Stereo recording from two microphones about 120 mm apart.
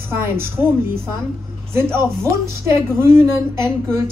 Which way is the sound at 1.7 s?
20° right (ahead or behind).